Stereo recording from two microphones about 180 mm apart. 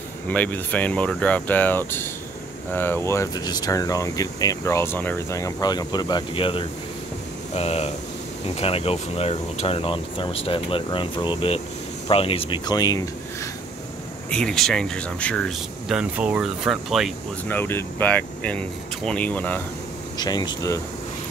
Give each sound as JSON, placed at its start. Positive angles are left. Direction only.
{"t": 0.3, "sound": "speech", "side_deg": 10}
{"t": 14.3, "sound": "speech", "side_deg": 5}
{"t": 17.5, "sound": "speech", "side_deg": 10}
{"t": 20.2, "sound": "speech", "side_deg": 25}